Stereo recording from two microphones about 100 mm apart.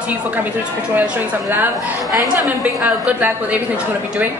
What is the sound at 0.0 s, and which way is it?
A woman's voice, 15° right (ahead or behind).